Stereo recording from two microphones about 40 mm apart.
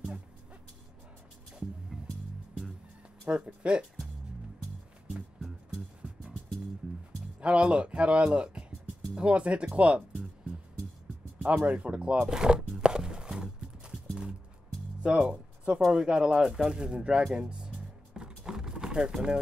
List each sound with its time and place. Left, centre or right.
1.9 s music: centre
3.3 s speech: right
7.3 s speech: right
11.4 s speech: right
12.2 s a sound: centre
15.0 s speech: right
17.3 s music: right